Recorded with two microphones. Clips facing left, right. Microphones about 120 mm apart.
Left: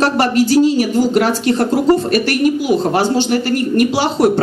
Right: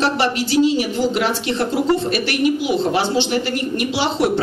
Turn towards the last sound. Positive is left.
turn(degrees=45)  # may be behind; listen again after turning